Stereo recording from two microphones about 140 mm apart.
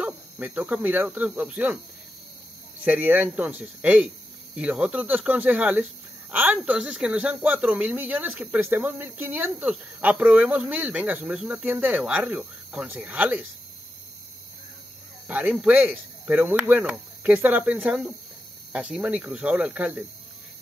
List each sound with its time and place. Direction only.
0.0 s speech: 10° right (ahead or behind)
2.8 s speech: 10° right (ahead or behind)
15.2 s speech: 10° right (ahead or behind)